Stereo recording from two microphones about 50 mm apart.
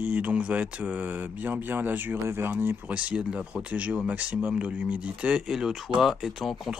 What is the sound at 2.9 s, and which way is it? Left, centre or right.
Speech, right.